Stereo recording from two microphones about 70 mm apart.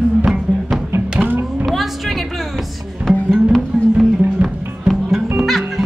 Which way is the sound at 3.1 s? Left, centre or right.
Centre.